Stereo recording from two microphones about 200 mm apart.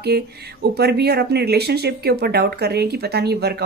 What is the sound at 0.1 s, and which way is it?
A woman's voice, 55° right (ahead or behind).